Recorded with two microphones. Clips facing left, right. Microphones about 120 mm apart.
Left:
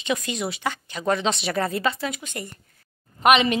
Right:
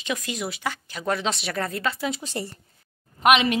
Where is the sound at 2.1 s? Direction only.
30° right (ahead or behind).